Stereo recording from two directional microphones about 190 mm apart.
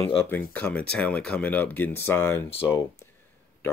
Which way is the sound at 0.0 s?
10° left (ahead or behind).